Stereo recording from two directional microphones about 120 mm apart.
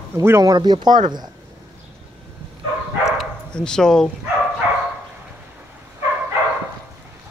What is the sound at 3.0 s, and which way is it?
Bow-wow, 5° left (ahead or behind).